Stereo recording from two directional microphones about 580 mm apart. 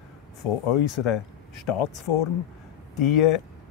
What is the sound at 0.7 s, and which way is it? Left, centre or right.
Speech, left.